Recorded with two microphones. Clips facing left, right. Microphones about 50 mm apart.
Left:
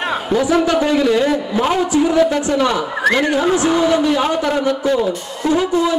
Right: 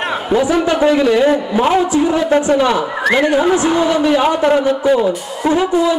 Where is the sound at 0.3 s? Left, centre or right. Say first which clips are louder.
Right 1 dB; right.